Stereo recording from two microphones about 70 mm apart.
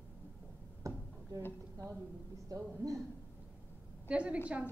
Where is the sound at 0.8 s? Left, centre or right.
Right.